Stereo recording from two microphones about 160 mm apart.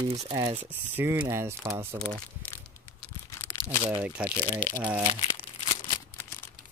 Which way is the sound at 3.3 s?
15° left (ahead or behind).